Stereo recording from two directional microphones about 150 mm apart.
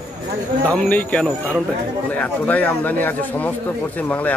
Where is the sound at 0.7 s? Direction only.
10° left (ahead or behind).